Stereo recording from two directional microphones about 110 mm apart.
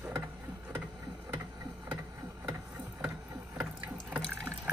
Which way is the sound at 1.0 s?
40° right (ahead or behind).